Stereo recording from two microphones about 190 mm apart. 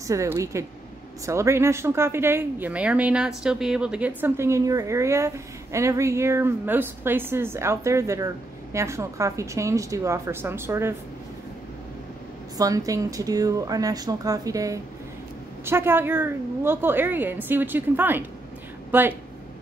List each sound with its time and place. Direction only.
0.0 s speech: 15° right (ahead or behind)
12.5 s speech: 20° right (ahead or behind)